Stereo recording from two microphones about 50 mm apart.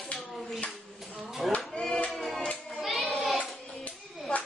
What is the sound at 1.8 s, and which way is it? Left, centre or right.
Music, centre.